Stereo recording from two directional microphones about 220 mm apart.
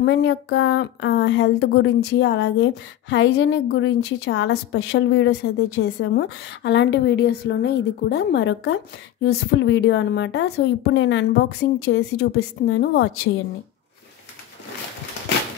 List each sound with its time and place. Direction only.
0.0 s a woman's voice: 55° left (ahead or behind)